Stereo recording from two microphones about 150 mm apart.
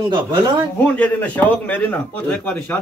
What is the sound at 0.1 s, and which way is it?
Speech, 30° right (ahead or behind).